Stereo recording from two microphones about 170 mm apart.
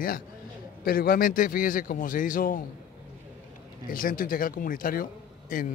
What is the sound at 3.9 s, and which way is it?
A man's voice, 55° left (ahead or behind).